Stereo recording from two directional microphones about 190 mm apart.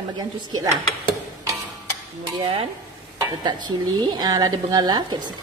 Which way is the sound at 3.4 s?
20° right (ahead or behind).